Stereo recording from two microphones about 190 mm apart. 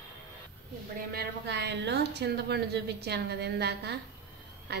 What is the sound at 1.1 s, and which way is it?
A woman's voice, 60° right (ahead or behind).